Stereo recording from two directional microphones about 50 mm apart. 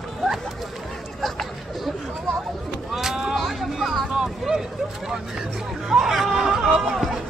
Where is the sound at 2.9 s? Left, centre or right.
Centre.